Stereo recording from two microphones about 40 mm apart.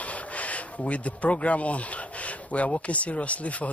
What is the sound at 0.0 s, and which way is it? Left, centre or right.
Speech, left.